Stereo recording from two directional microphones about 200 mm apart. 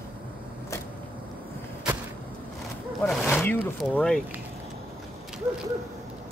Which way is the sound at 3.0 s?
Centre (ahead or behind).